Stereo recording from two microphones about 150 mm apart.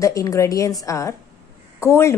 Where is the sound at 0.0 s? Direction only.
20° left (ahead or behind).